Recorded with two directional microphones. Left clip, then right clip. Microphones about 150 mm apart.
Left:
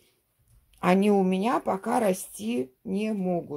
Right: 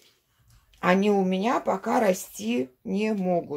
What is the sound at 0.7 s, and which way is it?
Speech, 40° left (ahead or behind).